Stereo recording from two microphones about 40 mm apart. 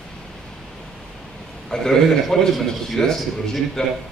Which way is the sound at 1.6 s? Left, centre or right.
Centre.